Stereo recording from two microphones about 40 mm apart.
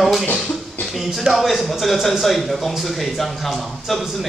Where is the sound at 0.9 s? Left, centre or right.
Centre.